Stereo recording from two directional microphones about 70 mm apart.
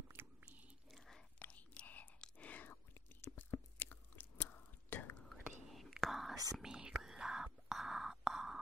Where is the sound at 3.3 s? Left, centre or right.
Left.